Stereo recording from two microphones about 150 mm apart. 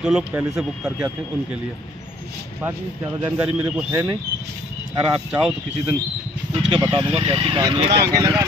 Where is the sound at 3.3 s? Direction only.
10° right (ahead or behind).